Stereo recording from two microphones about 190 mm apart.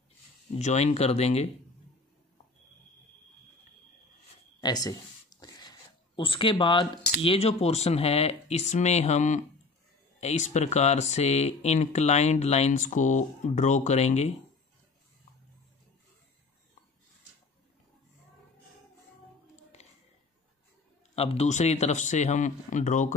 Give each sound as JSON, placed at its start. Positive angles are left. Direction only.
{"t": 0.6, "sound": "speech", "side_deg": 35}
{"t": 4.6, "sound": "a sound", "side_deg": 20}
{"t": 7.2, "sound": "speech", "side_deg": 30}
{"t": 19.5, "sound": "music", "side_deg": 35}
{"t": 21.1, "sound": "speech", "side_deg": 30}